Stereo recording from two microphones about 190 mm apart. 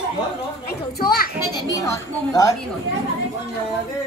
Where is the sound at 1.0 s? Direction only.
55° left (ahead or behind).